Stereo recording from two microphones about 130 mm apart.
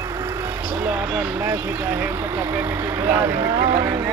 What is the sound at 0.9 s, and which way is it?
Speech, 15° right (ahead or behind).